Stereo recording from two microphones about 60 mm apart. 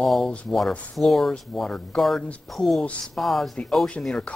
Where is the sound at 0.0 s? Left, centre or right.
Centre.